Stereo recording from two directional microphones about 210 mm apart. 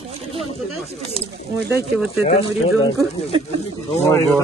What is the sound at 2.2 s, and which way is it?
Speech, 25° left (ahead or behind).